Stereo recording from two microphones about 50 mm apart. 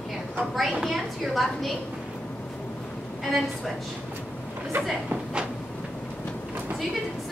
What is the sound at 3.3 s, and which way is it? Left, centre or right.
Speech, centre.